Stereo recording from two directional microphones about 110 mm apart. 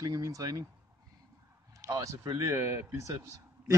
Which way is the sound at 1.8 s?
30° right (ahead or behind).